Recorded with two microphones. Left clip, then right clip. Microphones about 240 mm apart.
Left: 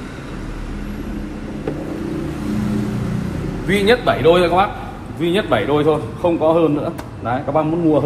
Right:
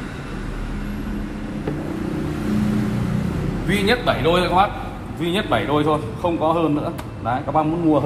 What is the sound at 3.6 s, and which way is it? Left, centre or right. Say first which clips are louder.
A man's voice: left 5 dB; centre.